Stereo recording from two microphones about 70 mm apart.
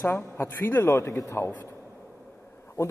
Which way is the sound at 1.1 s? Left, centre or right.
Left.